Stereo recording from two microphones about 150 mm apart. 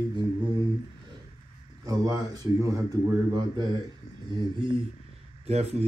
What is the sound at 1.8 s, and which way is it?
Speech, 25° right (ahead or behind).